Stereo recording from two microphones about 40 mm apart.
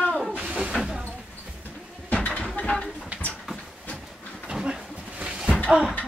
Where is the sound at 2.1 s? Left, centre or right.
Left.